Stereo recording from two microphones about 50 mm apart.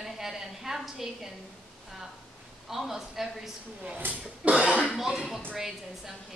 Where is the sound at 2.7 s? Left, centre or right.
Centre.